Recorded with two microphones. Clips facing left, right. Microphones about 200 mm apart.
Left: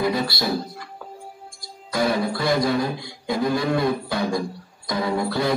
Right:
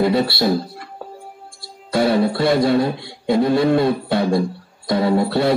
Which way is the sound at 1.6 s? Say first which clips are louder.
Right 5 dB; 30° right (ahead or behind).